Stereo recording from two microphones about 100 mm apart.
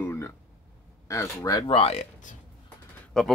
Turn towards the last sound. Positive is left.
turn(degrees=5)  # may be behind; listen again after turning